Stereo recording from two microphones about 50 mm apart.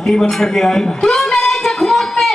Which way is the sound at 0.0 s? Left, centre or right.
Centre.